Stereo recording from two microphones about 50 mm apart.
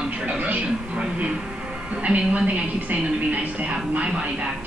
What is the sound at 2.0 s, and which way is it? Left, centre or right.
A woman's voice, right.